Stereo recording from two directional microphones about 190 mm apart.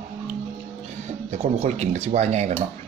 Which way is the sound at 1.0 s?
35° right (ahead or behind).